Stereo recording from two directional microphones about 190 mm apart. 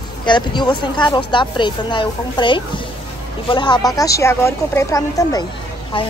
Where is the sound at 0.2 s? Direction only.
25° left (ahead or behind).